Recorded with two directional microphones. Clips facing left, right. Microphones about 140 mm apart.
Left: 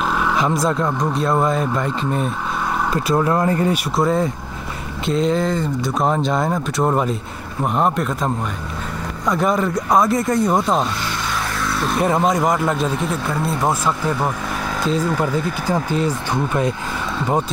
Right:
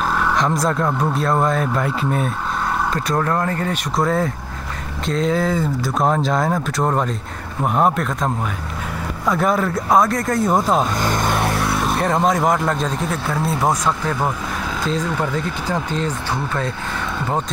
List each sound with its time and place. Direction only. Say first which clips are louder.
0.1 s speech: even; 5° left (ahead or behind)
2.9 s speech: left 5 dB; 10° left (ahead or behind)
3.9 s speech: left 1 dB; centre (ahead or behind)
11.0 s vehicle: right 5 dB; 45° right (ahead or behind)
12.0 s speech: left 1 dB; 5° left (ahead or behind)